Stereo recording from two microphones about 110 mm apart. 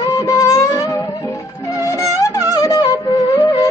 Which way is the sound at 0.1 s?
30° left (ahead or behind).